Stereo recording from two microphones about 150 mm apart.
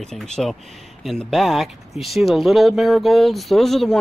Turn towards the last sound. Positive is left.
turn(degrees=0)  # may be behind; listen again after turning